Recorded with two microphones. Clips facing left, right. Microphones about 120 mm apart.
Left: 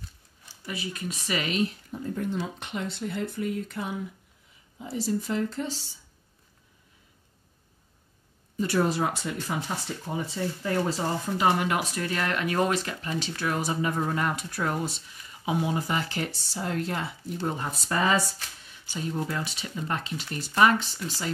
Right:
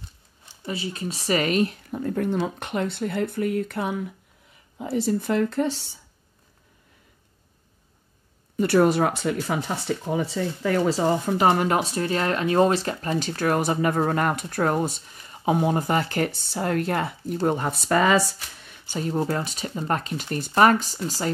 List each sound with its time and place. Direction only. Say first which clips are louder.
0.7 s speech: right 4 dB; 30° right (ahead or behind); by 5.9 s 60° right (ahead or behind)
8.5 s speech: right 7 dB; 65° right (ahead or behind); by 11.1 s 90° right
11.3 s speech: right 2 dB; 45° right (ahead or behind); by 12.9 s 30° right (ahead or behind)
13.0 s speech: right 6 dB; 40° right (ahead or behind)
19.1 s speech: right 7 dB; 40° right (ahead or behind)